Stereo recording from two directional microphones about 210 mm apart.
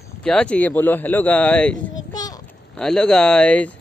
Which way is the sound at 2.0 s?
20° left (ahead or behind).